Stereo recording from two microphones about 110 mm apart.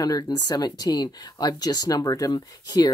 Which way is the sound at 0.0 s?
35° left (ahead or behind).